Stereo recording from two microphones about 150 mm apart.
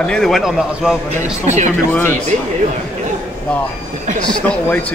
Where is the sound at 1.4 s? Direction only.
50° right (ahead or behind).